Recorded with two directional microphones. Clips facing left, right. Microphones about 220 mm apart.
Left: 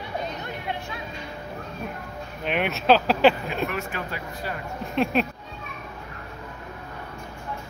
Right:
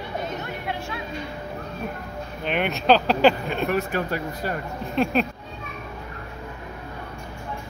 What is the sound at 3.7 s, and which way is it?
Speech, 40° right (ahead or behind).